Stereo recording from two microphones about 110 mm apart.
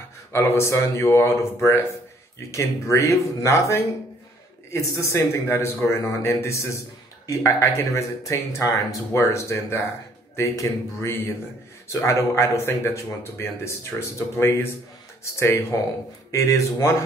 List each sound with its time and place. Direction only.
0.3 s a man's voice: 25° left (ahead or behind)